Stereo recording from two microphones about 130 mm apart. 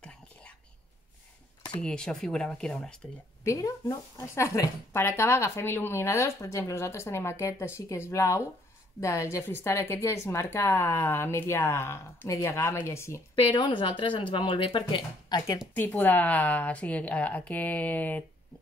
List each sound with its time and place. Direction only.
1.8 s speech: 5° left (ahead or behind)
3.4 s speech: 25° left (ahead or behind)
13.5 s speech: 35° left (ahead or behind)
15.7 s a woman's voice: 15° left (ahead or behind)